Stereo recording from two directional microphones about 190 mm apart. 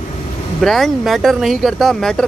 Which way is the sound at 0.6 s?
Centre (ahead or behind).